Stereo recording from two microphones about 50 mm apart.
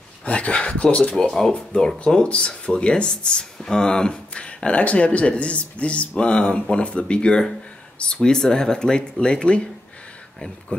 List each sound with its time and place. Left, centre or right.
0.2 s speech: left
10.7 s speech: left